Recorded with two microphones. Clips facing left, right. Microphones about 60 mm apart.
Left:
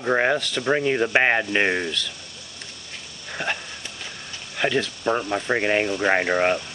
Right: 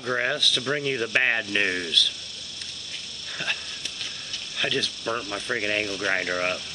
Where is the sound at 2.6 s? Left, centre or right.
Left.